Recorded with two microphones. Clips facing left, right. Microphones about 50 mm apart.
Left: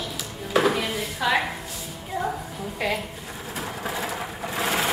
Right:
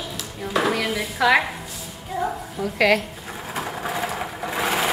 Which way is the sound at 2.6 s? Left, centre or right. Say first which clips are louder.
Right 7 dB; right.